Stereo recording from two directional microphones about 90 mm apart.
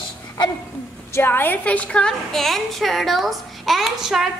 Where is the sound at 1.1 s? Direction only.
25° left (ahead or behind).